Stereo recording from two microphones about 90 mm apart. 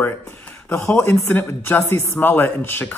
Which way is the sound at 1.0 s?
25° left (ahead or behind).